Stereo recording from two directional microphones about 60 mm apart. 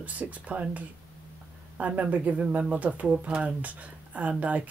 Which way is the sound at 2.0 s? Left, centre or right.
Right.